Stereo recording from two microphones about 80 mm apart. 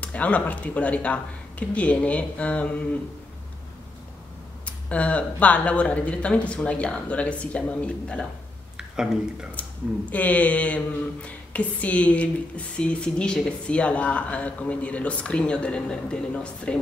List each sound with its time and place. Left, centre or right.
0.0 s speech: centre
4.6 s speech: centre
8.7 s speech: centre
9.5 s speech: centre